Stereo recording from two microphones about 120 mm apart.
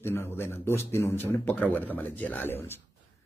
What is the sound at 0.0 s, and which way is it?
A man's voice, 20° left (ahead or behind).